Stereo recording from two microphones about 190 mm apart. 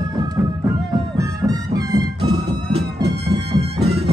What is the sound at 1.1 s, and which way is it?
Music, 20° right (ahead or behind).